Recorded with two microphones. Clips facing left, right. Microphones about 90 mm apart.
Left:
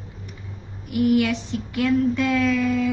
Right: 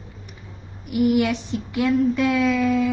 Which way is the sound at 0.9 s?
20° right (ahead or behind).